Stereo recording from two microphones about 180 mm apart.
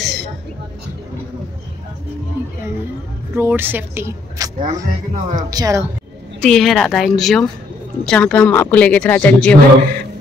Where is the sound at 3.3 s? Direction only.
10° right (ahead or behind).